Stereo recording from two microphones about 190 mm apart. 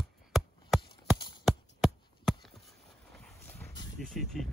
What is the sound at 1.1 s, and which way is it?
Clip-clop, 25° left (ahead or behind).